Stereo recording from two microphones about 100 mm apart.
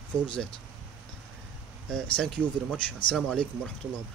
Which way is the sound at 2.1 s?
10° left (ahead or behind).